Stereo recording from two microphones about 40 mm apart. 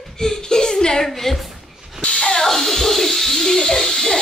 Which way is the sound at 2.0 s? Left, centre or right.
Left.